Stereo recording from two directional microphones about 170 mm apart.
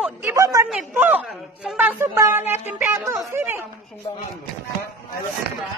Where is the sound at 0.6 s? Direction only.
5° right (ahead or behind).